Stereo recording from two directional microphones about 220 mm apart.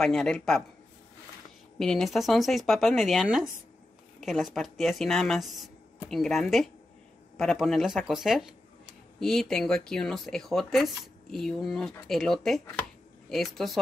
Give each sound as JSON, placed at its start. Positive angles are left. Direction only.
{"t": 0.0, "sound": "speech", "side_deg": 5}
{"t": 1.8, "sound": "speech", "side_deg": 0}